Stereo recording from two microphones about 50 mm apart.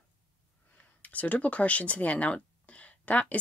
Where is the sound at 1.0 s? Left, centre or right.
Left.